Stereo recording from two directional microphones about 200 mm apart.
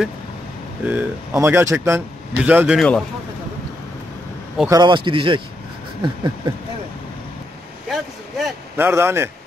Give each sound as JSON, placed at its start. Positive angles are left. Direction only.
{"t": 0.8, "sound": "speech", "side_deg": -10}
{"t": 4.6, "sound": "speech", "side_deg": -20}
{"t": 7.9, "sound": "speech", "side_deg": 0}